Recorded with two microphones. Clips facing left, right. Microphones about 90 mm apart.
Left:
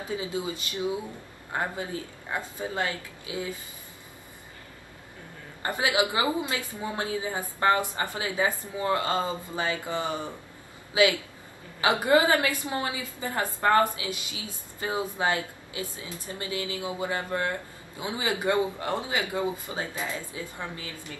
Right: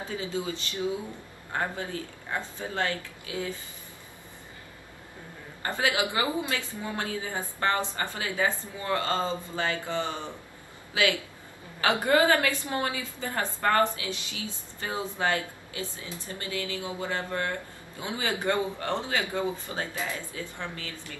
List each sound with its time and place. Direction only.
0.0 s speech: 20° left (ahead or behind)
5.6 s speech: 20° left (ahead or behind)
11.8 s a woman's voice: 15° left (ahead or behind)